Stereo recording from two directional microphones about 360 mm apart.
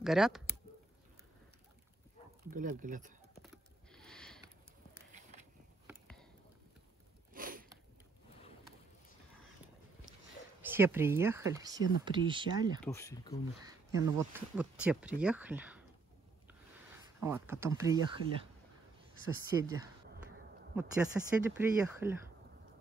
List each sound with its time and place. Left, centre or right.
0.0 s speech: centre
2.5 s speech: right
3.4 s a sound: centre
5.9 s a sound: centre
7.3 s a sound: right
10.6 s speech: centre
12.8 s speech: centre
13.7 s speech: centre
17.2 s speech: centre
19.2 s speech: centre
21.2 s speech: centre